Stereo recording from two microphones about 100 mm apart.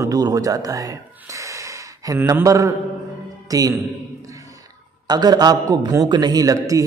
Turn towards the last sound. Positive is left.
turn(degrees=-35)  # may be behind; listen again after turning